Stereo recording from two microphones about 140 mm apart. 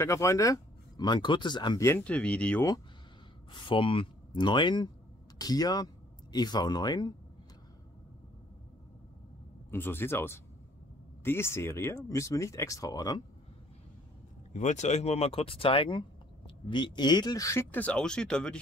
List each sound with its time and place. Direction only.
0.0 s speech: 20° left (ahead or behind)
1.9 s speech: 10° left (ahead or behind)
3.5 s speech: 40° left (ahead or behind)
9.7 s speech: 15° left (ahead or behind)
14.5 s speech: 60° left (ahead or behind); by 18.6 s 5° left (ahead or behind)